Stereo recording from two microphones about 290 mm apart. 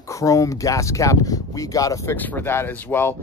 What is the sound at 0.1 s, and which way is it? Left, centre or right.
Speech, centre.